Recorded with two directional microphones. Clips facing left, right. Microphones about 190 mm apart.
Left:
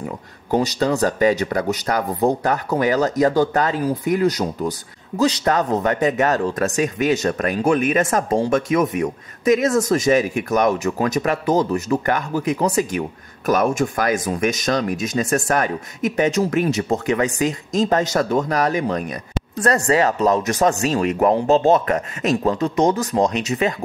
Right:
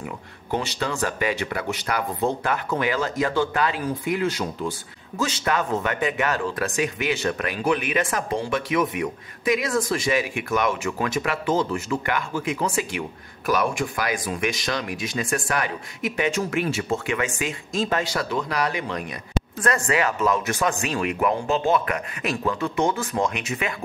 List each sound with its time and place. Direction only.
0.0 s speech: 40° left (ahead or behind)